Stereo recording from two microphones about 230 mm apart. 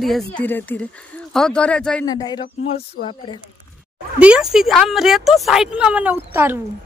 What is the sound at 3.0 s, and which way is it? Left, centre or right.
Speech, left.